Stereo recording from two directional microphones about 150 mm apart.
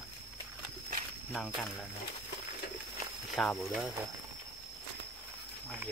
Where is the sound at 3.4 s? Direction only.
5° left (ahead or behind).